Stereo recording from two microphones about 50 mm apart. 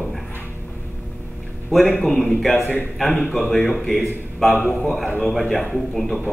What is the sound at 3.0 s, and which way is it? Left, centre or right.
Speech, centre.